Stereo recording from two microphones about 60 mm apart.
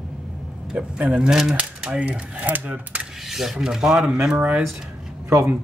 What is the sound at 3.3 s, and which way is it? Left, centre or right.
Speech, centre.